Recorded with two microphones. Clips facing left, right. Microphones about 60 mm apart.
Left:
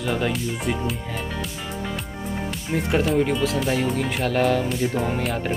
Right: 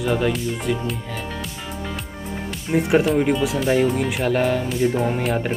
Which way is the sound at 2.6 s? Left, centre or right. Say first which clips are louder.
Right 5 dB; centre.